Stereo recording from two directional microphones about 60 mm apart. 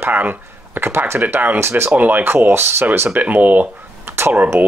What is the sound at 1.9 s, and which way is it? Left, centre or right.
Speech, right.